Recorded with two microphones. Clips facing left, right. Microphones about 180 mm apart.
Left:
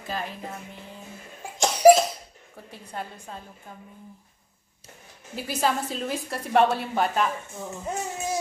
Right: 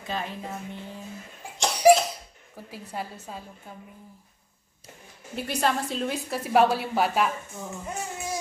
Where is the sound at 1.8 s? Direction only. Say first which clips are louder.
Left 3 dB; 45° left (ahead or behind).